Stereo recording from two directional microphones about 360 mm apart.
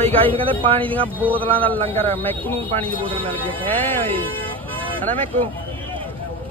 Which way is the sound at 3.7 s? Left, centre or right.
Centre.